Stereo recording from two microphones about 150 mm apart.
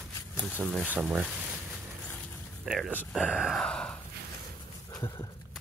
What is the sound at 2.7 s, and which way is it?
Speech, 5° right (ahead or behind).